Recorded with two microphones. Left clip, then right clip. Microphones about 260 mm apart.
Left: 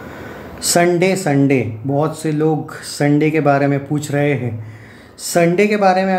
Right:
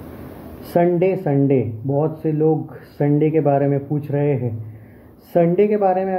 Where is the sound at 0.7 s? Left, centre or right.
Centre.